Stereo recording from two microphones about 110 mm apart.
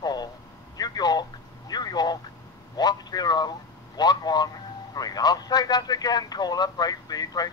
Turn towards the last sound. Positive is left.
turn(degrees=35)  # may be behind; listen again after turning